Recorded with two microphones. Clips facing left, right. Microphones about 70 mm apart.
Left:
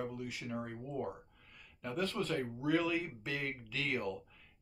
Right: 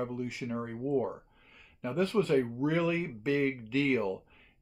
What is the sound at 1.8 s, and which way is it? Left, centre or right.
Speech, right.